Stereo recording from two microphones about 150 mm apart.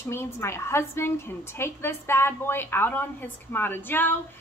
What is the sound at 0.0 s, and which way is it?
A woman's voice, 15° left (ahead or behind).